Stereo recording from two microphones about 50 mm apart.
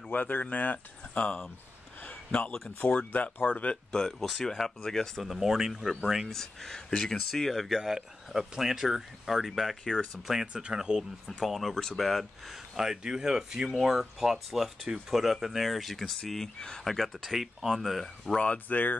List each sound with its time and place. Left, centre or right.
0.1 s speech: left
2.0 s a sound: left
2.8 s speech: left
3.9 s speech: centre
6.3 s speech: centre
11.0 s speech: centre
16.8 s speech: centre
18.7 s speech: left